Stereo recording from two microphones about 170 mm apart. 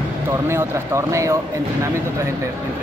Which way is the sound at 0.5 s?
15° right (ahead or behind).